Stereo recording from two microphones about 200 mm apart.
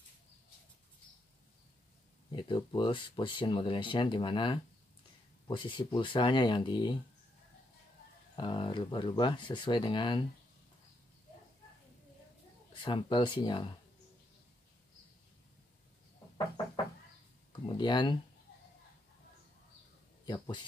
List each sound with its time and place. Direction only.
2.3 s speech: 20° left (ahead or behind)
8.4 s speech: 25° left (ahead or behind)
12.7 s speech: 25° left (ahead or behind)
17.5 s speech: 25° left (ahead or behind)
20.2 s speech: 20° left (ahead or behind)